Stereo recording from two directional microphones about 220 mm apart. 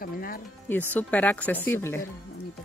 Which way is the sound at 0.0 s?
40° left (ahead or behind).